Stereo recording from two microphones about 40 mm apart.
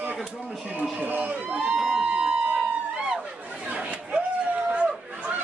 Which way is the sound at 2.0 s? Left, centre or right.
Right.